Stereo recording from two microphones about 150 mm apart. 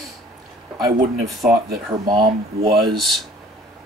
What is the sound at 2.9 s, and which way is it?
Speech, centre (ahead or behind).